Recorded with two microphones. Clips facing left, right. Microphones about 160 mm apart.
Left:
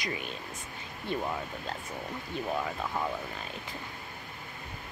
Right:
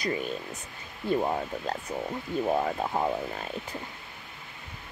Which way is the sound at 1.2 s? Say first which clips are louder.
Right 6 dB; 40° right (ahead or behind).